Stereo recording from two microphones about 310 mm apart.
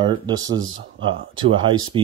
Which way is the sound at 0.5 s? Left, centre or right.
Right.